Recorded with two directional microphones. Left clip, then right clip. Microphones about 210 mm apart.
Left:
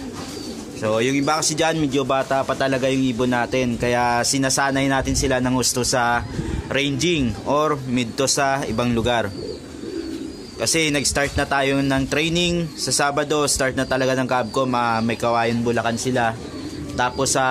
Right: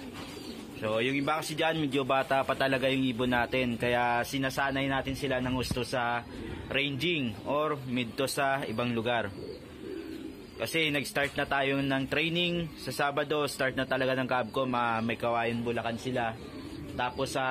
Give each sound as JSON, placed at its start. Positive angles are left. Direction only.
{"t": 0.8, "sound": "speech", "side_deg": 15}
{"t": 10.6, "sound": "speech", "side_deg": 10}